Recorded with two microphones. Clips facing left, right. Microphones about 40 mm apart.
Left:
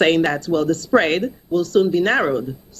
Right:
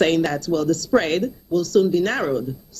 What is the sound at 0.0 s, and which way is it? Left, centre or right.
Speech, left.